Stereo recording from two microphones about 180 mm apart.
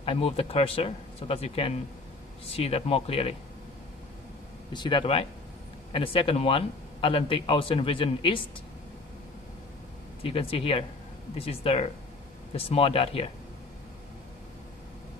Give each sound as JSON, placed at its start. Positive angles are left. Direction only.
{"t": 0.0, "sound": "a man's voice", "side_deg": 30}
{"t": 4.7, "sound": "a man's voice", "side_deg": 25}
{"t": 10.2, "sound": "a man's voice", "side_deg": 30}